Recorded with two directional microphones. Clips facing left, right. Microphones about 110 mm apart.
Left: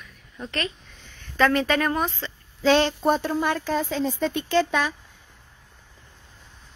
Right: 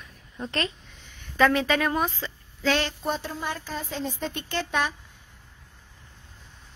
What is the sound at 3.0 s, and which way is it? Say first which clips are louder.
Speech: left 8 dB; 50° left (ahead or behind).